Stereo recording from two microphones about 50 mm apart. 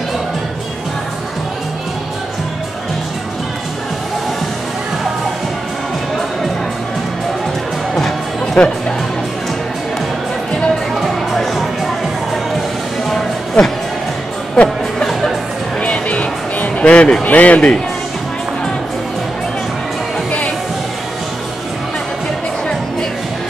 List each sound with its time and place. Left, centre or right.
8.5 s music: centre
11.0 s music: centre
13.6 s music: left
15.0 s music: centre
15.8 s music: left
17.2 s speech: left